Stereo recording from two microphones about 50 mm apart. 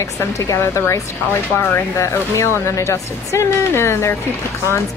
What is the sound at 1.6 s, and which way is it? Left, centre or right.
Speech, left.